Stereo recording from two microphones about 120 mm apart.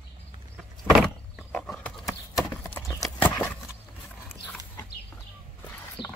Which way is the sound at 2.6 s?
25° left (ahead or behind).